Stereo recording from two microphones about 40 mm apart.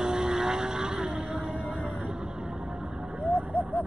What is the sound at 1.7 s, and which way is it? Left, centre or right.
Vehicle, right.